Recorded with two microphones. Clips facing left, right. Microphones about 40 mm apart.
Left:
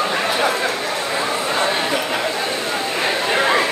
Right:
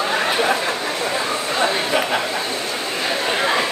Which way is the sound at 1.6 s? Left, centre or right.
Centre.